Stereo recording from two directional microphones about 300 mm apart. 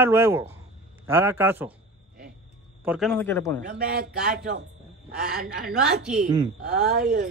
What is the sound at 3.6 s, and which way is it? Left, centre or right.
A woman's voice, right.